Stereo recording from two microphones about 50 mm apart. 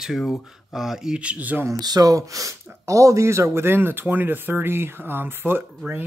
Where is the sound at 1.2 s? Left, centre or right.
Right.